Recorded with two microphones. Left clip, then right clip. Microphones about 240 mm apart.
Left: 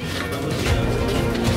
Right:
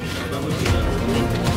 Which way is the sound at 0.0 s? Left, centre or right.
Centre.